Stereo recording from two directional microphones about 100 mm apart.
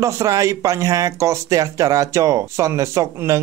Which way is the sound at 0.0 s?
35° right (ahead or behind).